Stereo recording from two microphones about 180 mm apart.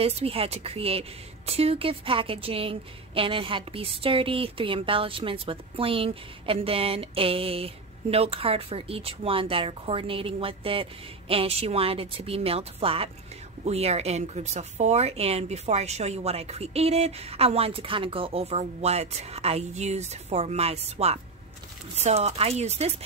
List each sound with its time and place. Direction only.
0.0 s speech: 30° right (ahead or behind)